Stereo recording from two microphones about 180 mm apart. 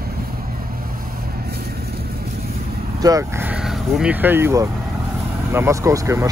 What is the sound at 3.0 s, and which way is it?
Speech, 20° right (ahead or behind).